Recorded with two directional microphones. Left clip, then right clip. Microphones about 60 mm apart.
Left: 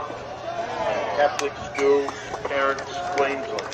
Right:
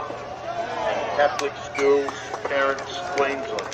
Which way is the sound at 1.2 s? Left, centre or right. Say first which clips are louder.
Right 1 dB; right.